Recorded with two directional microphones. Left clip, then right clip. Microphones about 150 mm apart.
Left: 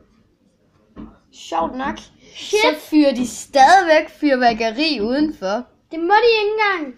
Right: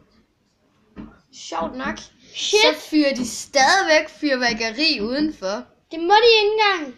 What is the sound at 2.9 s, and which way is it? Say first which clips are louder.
A woman's voice: left 4 dB; 45° left (ahead or behind).